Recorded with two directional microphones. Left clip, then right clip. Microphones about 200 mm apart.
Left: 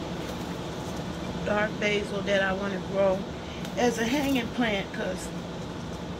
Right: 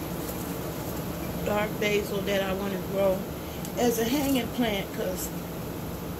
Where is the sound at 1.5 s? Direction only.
20° right (ahead or behind).